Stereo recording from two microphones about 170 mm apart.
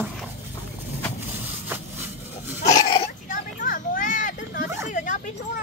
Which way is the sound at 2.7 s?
30° left (ahead or behind).